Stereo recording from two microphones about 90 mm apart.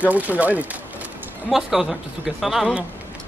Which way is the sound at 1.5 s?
5° right (ahead or behind).